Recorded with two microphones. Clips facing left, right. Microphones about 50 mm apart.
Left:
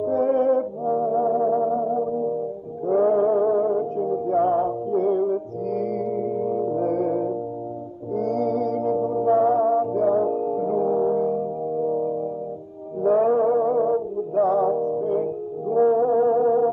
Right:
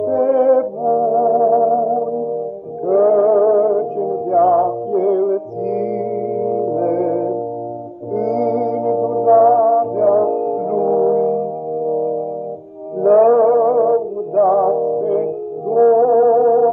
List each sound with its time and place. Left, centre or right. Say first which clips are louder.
0.0 s music: right 6 dB; right
2.9 s music: right 7 dB; right
4.0 s music: right 5 dB; right
4.4 s music: right 9 dB; right
8.6 s music: right 6 dB; right
13.0 s music: right 8 dB; right
14.3 s music: right 7 dB; right
14.7 s music: right 6 dB; right